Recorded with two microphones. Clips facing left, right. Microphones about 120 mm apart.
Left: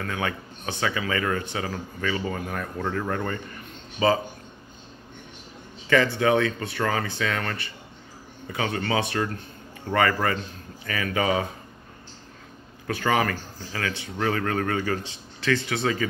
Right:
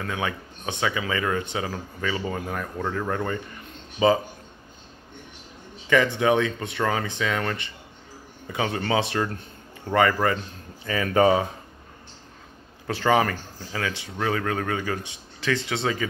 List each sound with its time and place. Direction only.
0.0 s speech: 20° right (ahead or behind)
2.5 s speech: 5° right (ahead or behind)
5.9 s speech: 15° right (ahead or behind)
11.1 s speech: 35° right (ahead or behind)
12.8 s speech: 25° right (ahead or behind)
14.1 s speech: 5° right (ahead or behind); by 15.9 s 20° right (ahead or behind)